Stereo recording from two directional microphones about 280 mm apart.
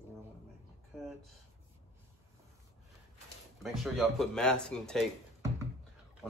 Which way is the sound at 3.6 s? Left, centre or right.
Centre.